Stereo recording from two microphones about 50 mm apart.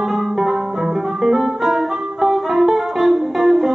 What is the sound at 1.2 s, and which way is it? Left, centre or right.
Music, centre.